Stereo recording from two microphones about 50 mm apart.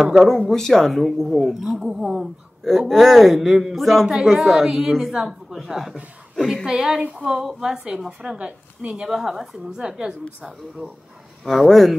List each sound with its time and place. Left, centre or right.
0.0 s a woman's voice: centre
0.5 s a woman's voice: centre
1.5 s a woman's voice: centre
4.1 s a woman's voice: centre
6.7 s a woman's voice: centre
8.2 s speech: right
9.0 s a woman's voice: centre
9.7 s a woman's voice: centre
11.4 s a woman's voice: centre